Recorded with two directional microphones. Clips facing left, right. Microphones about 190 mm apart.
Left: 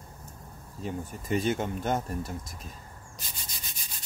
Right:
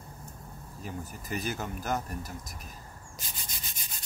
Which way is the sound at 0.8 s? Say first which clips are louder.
Left 6 dB; 25° left (ahead or behind).